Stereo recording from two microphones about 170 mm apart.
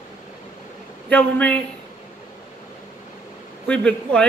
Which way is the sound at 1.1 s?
10° left (ahead or behind).